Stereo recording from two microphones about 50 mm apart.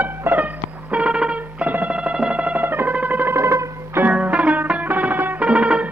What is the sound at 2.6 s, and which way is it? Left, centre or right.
Music, right.